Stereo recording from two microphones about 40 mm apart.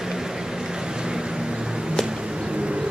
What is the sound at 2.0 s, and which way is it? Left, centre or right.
Bird, right.